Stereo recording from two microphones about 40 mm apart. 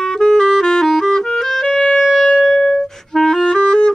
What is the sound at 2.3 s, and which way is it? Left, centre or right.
Music, centre.